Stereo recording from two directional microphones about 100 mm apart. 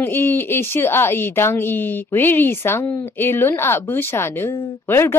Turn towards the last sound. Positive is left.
turn(degrees=25)  # may be behind; listen again after turning